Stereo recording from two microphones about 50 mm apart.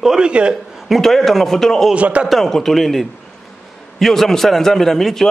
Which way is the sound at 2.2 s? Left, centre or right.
Centre.